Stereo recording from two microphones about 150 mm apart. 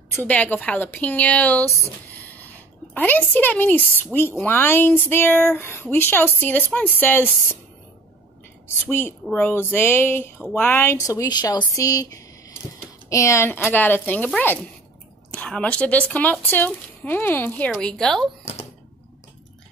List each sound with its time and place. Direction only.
0.1 s speech: 10° left (ahead or behind)
8.6 s speech: 15° left (ahead or behind)